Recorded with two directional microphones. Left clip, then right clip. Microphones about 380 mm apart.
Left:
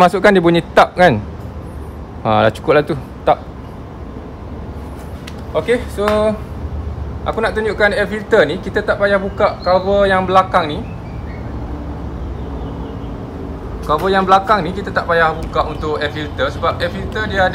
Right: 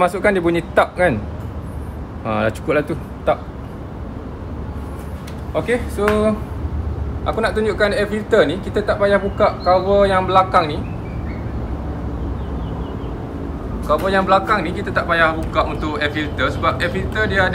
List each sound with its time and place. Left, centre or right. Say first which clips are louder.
0.0 s speech: left 6 dB; left
2.2 s speech: left 7 dB; left
5.5 s speech: left 4 dB; left
14.0 s a man's voice: left 4 dB; centre